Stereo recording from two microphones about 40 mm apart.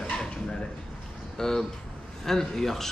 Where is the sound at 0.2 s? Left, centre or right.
Left.